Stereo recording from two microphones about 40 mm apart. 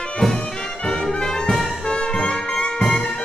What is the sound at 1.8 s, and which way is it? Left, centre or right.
Music, left.